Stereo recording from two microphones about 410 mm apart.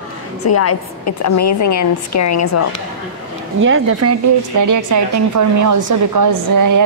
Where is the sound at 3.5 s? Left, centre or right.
Right.